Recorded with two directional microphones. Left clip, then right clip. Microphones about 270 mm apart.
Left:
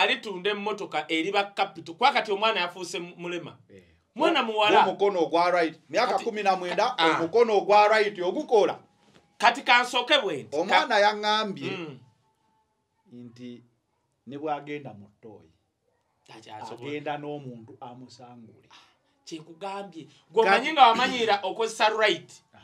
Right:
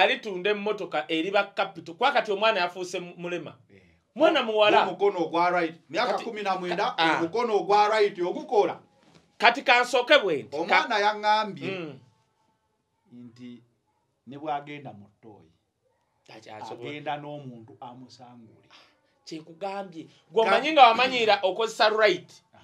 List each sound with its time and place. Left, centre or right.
0.0 s speech: right
4.9 s a man's voice: centre
7.0 s speech: right
7.3 s a man's voice: centre
9.4 s speech: right
10.8 s speech: centre
11.7 s speech: right
13.1 s a man's voice: centre
16.3 s speech: right
16.8 s a man's voice: centre
18.7 s speech: right